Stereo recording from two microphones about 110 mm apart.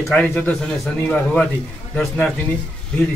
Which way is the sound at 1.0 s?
10° left (ahead or behind).